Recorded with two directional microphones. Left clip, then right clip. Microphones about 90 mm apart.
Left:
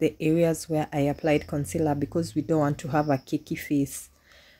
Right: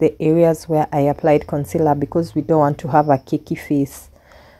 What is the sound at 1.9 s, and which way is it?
Speech, 25° right (ahead or behind).